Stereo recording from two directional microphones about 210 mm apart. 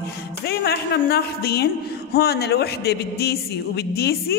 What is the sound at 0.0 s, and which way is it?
A woman's voice, 50° left (ahead or behind).